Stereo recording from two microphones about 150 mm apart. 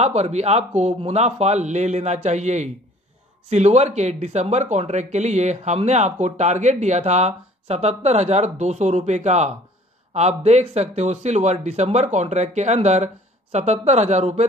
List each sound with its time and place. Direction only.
0.0 s speech: 45° right (ahead or behind)